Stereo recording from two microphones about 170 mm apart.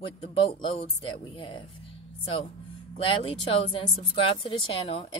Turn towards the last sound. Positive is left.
turn(degrees=30)  # may be behind; listen again after turning